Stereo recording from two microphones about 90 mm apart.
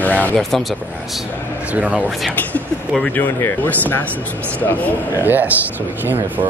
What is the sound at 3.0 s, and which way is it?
Speech, 20° left (ahead or behind).